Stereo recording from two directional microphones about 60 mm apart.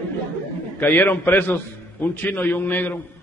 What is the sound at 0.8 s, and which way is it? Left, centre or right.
A man's voice, left.